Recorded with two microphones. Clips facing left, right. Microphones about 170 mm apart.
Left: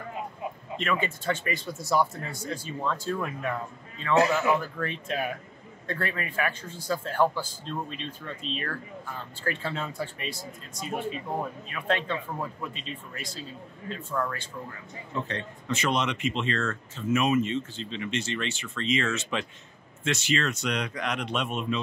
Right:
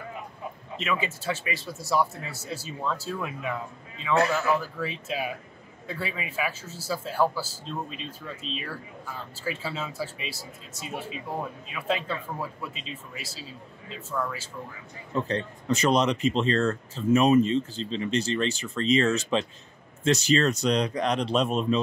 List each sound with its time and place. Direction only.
0.7 s speech: 5° right (ahead or behind)
15.2 s speech: 35° right (ahead or behind)